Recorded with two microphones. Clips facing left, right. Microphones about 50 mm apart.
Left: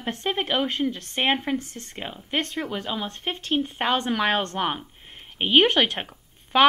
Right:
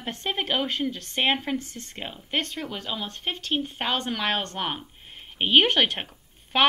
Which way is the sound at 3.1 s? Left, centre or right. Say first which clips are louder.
Left 2 dB; left.